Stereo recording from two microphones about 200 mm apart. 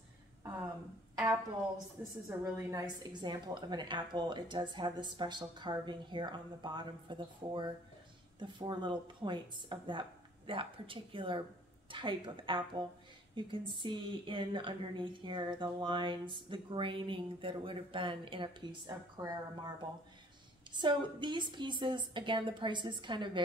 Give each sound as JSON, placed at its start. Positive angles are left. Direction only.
{"t": 2.2, "sound": "speech", "side_deg": -15}
{"t": 20.7, "sound": "speech", "side_deg": -25}